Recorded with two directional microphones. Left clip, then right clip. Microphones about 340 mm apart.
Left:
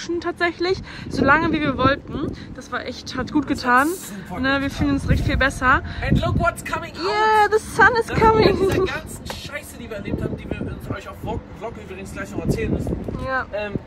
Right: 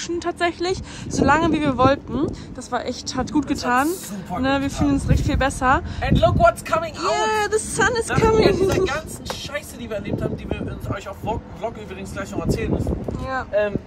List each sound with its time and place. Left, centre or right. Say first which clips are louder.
0.0 s speech: even; centre
10.9 s speech: right 4 dB; centre